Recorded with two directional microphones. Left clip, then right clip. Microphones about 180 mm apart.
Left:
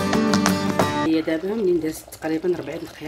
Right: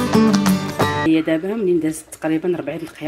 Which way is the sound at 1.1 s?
15° right (ahead or behind).